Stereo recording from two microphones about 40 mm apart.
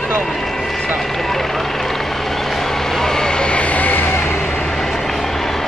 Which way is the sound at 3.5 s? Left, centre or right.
Left.